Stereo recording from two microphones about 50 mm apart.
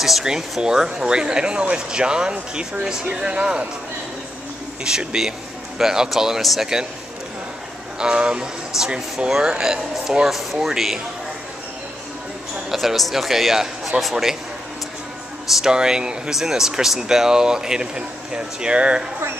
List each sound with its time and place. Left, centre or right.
0.0 s speech: centre
4.8 s speech: centre
8.0 s speech: centre
12.7 s speech: centre
15.5 s speech: centre